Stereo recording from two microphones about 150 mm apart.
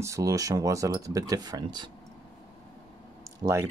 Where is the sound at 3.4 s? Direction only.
20° right (ahead or behind).